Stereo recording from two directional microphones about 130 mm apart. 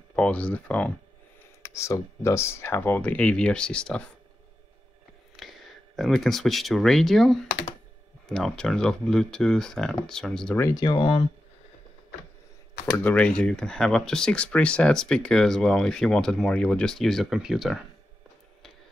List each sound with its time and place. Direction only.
0.1 s speech: 10° left (ahead or behind)
1.6 s speech: 20° left (ahead or behind)
5.3 s speech: centre (ahead or behind)
10.6 s speech: 30° left (ahead or behind)
13.0 s speech: 10° left (ahead or behind)